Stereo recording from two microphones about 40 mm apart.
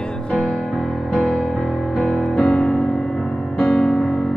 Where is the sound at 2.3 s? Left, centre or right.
Left.